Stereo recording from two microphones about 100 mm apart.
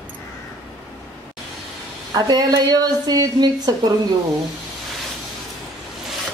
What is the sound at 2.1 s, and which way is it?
A woman's voice, 40° right (ahead or behind).